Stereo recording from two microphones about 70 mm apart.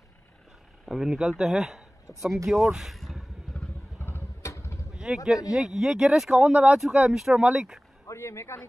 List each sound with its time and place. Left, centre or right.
0.8 s speech: centre
4.0 s vehicle: left
4.9 s speech: centre
8.1 s speech: left